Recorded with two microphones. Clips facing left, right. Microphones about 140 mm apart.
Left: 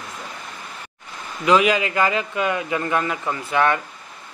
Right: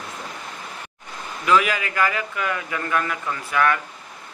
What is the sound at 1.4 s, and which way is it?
Speech, 20° left (ahead or behind).